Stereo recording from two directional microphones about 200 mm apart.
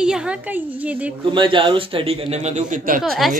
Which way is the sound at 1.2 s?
25° right (ahead or behind).